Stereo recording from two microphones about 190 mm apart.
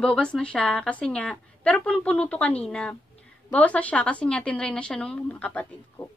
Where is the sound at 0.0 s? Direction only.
5° left (ahead or behind).